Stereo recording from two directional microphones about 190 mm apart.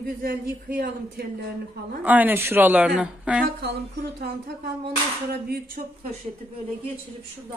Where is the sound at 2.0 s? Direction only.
10° right (ahead or behind).